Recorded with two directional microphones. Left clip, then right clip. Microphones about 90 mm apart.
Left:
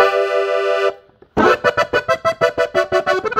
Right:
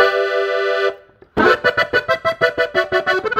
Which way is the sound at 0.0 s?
15° right (ahead or behind).